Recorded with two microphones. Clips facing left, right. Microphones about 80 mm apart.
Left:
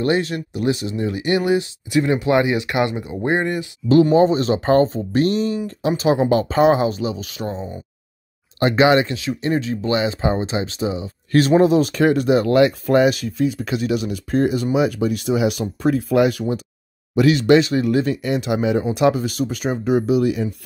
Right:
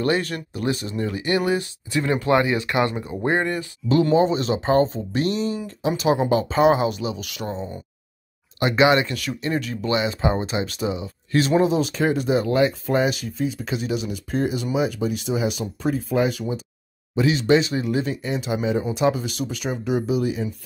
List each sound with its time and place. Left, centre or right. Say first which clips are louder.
0.0 s speech: left 3 dB; left
4.2 s speech: left 4 dB; left
8.5 s speech: left 3 dB; left
11.3 s speech: left 5 dB; left